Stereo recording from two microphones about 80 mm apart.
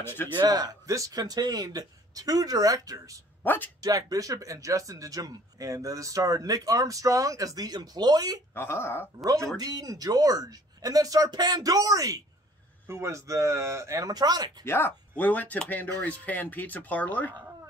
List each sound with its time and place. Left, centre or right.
0.0 s speech: left
0.4 s speech: right
0.8 s speech: right
3.4 s speech: left
3.8 s speech: right
8.5 s speech: left
9.2 s speech: right
12.8 s speech: right
14.1 s speech: right
14.6 s speech: left